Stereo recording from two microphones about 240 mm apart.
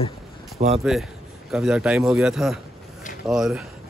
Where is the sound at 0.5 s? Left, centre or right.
Right.